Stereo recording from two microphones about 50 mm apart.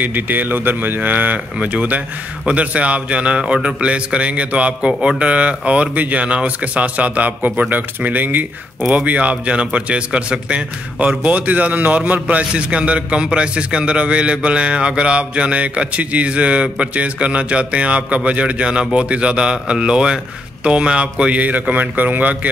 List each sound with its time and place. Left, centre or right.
0.0 s speech: right